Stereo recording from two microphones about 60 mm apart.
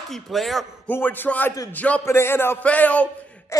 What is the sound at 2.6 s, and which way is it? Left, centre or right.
Speech, left.